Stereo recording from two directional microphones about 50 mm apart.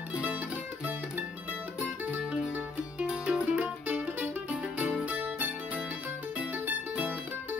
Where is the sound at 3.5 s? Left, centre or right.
Right.